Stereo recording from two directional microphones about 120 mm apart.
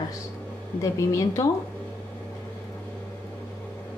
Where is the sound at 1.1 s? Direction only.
25° left (ahead or behind).